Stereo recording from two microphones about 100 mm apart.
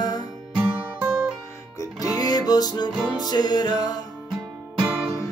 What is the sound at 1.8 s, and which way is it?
Music, 35° left (ahead or behind).